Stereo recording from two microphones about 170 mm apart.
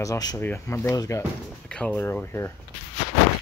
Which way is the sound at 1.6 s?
5° left (ahead or behind).